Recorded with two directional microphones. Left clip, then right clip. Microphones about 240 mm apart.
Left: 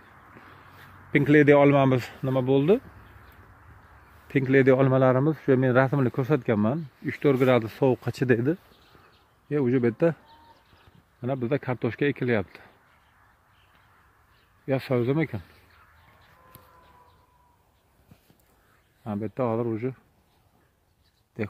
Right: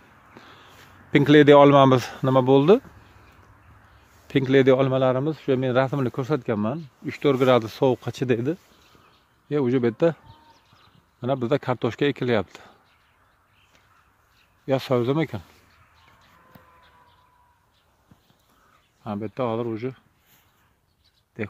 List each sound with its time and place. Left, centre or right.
1.1 s speech: centre
4.3 s speech: centre
4.7 s speech: centre
9.5 s speech: centre
11.1 s speech: centre
14.7 s speech: centre
19.0 s speech: centre
21.4 s speech: centre